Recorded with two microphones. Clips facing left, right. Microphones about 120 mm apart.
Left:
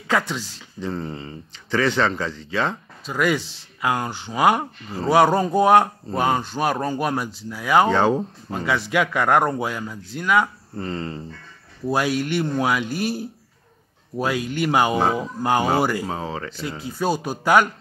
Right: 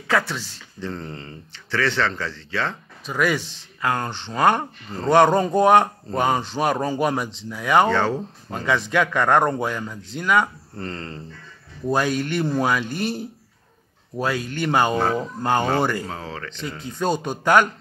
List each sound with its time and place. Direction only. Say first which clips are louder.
0.1 s speech: even; 15° left (ahead or behind)
7.9 s speech: left 3 dB; 15° left (ahead or behind)
8.5 s speech: right 2 dB; 5° left (ahead or behind)
16.5 s speech: left 1 dB; 5° left (ahead or behind)